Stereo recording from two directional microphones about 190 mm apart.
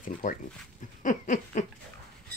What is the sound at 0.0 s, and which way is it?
Speech, 45° left (ahead or behind).